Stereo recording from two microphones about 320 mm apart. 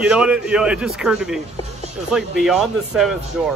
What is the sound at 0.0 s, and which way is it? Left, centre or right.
A man's voice, centre.